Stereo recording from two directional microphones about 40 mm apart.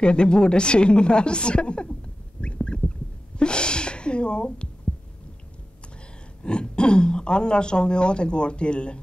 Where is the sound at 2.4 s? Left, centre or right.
Left.